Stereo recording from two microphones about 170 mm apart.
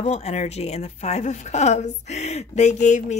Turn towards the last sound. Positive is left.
turn(degrees=45)  # may be behind; listen again after turning